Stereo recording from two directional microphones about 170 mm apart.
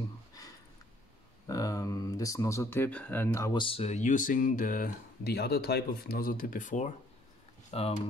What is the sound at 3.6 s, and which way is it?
Speech, 35° left (ahead or behind).